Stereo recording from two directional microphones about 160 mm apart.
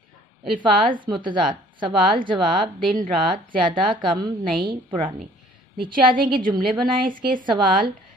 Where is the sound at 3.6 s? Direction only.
30° right (ahead or behind).